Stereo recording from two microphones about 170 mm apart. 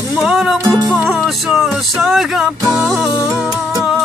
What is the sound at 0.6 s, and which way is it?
Music, 20° right (ahead or behind).